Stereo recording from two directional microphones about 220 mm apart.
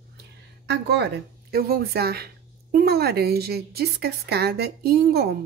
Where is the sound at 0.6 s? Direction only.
50° right (ahead or behind).